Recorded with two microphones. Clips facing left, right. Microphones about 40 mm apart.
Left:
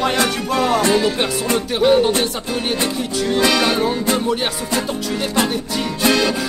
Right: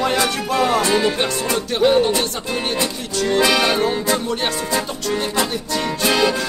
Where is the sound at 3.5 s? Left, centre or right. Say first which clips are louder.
Even; centre.